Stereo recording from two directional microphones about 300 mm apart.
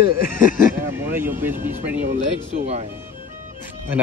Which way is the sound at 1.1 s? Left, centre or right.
Centre.